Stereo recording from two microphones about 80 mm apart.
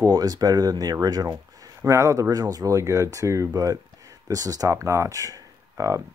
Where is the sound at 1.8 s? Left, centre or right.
Right.